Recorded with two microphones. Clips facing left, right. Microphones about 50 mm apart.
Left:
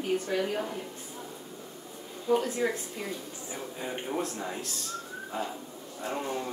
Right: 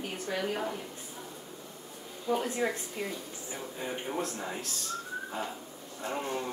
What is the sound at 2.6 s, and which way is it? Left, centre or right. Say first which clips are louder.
Speech: left 2 dB; centre.